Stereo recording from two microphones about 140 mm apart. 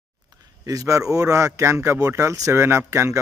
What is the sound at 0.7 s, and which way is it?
Speech, 25° right (ahead or behind).